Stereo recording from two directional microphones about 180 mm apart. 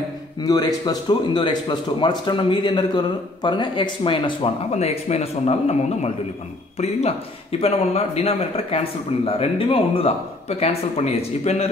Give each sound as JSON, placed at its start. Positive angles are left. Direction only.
{"t": 0.4, "sound": "a man's voice", "side_deg": 20}